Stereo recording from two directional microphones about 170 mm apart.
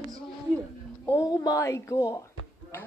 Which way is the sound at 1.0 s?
20° left (ahead or behind).